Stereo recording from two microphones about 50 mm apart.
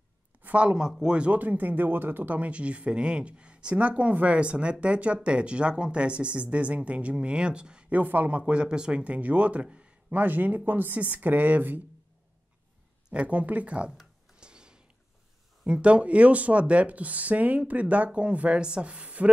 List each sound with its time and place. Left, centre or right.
0.4 s a sound: right
0.7 s speech: centre
7.9 s speech: right
8.4 s speech: right
10.1 s speech: right
13.1 s speech: right
14.4 s a sound: centre
15.6 s speech: right